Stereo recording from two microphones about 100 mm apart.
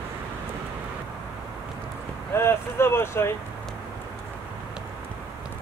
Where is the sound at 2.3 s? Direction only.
25° left (ahead or behind).